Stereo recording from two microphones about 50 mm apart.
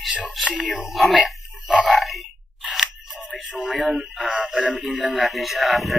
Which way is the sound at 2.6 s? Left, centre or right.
Centre.